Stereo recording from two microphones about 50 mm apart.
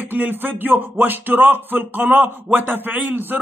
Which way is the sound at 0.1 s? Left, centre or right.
Right.